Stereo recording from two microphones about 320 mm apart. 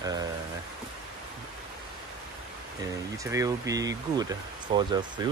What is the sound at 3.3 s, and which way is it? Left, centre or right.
Speech, centre.